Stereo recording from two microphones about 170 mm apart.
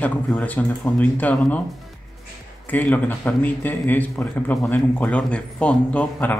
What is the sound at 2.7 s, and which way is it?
Speech, 10° left (ahead or behind).